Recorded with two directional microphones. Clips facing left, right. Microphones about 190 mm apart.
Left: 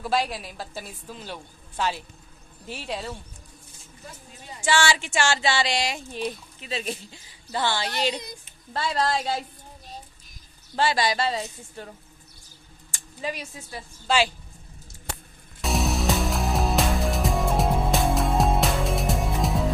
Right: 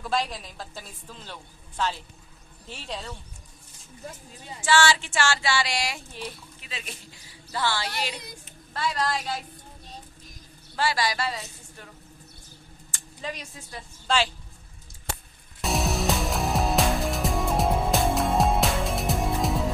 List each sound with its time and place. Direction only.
0.0 s a woman's voice: 5° left (ahead or behind)
4.6 s a woman's voice: 15° left (ahead or behind)
6.6 s speech: 30° left (ahead or behind)
7.5 s a woman's voice: 20° left (ahead or behind)
10.8 s a woman's voice: 25° left (ahead or behind)
12.9 s speech: 10° left (ahead or behind)
15.6 s music: centre (ahead or behind)